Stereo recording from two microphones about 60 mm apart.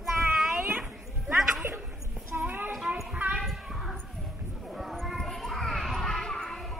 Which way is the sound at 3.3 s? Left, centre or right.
Centre.